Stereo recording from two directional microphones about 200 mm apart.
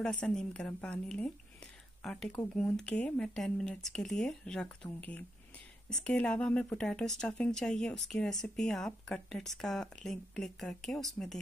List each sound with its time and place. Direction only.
0.0 s a woman's voice: 5° left (ahead or behind)